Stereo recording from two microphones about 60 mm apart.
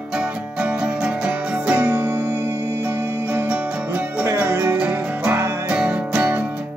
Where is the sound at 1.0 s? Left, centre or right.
Right.